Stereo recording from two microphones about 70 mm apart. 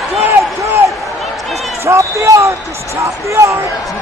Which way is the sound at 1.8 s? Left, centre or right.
Right.